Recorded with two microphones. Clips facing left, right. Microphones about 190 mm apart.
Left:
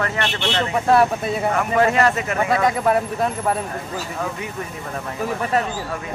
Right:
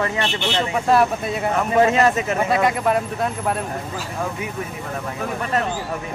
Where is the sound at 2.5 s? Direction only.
Centre (ahead or behind).